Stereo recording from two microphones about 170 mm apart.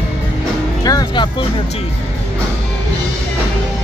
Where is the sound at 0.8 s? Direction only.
25° left (ahead or behind).